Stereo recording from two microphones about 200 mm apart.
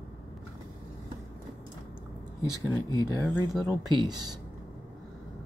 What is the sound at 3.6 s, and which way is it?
Speech, 20° right (ahead or behind).